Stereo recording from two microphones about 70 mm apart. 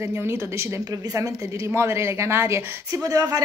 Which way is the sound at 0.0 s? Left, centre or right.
Right.